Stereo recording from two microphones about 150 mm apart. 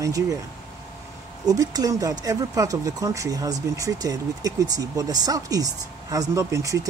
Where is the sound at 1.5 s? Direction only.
25° right (ahead or behind).